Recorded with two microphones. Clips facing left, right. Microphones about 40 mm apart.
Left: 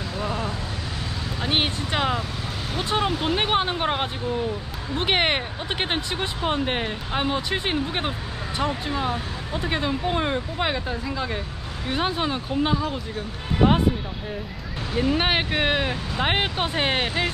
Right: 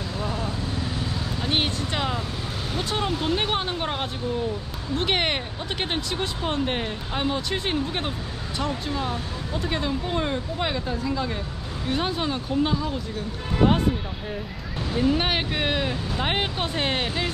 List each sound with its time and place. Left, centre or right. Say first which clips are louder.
0.2 s vehicle: left 2 dB; centre
1.4 s speech: left 2 dB; centre
15.0 s speech: left 1 dB; centre